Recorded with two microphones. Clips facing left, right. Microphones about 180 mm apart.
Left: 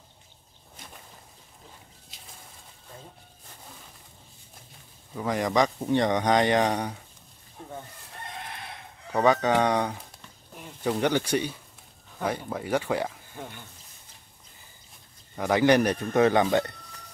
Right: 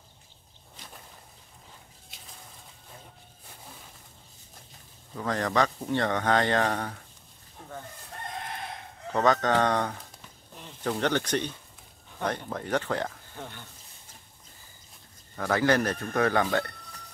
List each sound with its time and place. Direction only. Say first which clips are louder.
5.1 s speech: left 2 dB; 10° left (ahead or behind)
9.1 s speech: left 2 dB; 10° left (ahead or behind)
15.3 s a man's voice: left 4 dB; 15° left (ahead or behind)